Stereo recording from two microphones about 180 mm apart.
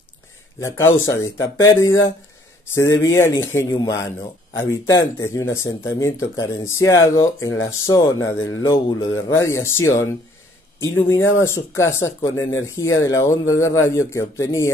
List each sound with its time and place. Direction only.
0.6 s speech: 15° left (ahead or behind)
2.7 s speech: 15° left (ahead or behind)